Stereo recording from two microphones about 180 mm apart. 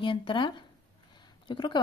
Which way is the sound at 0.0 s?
30° left (ahead or behind).